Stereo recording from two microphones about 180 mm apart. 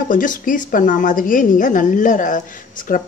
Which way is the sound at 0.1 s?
45° left (ahead or behind).